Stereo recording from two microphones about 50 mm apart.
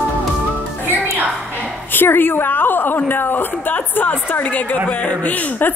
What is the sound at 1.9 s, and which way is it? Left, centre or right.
A woman's voice, left.